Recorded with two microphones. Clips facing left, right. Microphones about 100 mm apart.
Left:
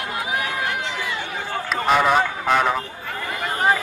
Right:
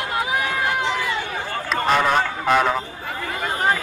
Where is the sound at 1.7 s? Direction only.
5° left (ahead or behind).